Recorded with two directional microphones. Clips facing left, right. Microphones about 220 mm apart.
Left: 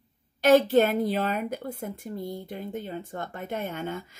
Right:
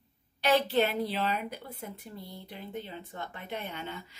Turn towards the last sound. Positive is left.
turn(degrees=45)  # may be behind; listen again after turning